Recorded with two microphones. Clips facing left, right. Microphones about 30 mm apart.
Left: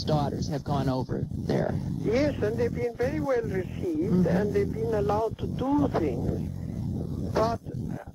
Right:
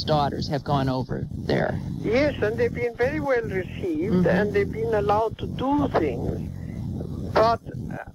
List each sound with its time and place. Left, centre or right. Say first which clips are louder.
0.0 s speech: right 5 dB; right
0.7 s speech: right 1 dB; right
1.5 s speech: right 4 dB; right
2.0 s speech: right 4 dB; right
4.5 s speech: right 3 dB; right
7.3 s speech: right 7 dB; right